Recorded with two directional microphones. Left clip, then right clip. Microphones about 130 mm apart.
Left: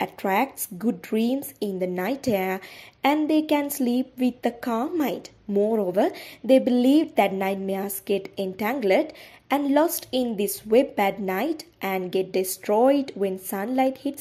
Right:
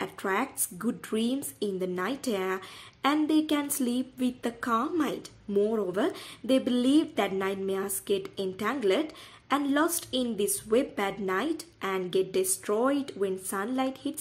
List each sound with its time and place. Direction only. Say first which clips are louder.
0.0 s a woman's voice: left 6 dB; 25° left (ahead or behind)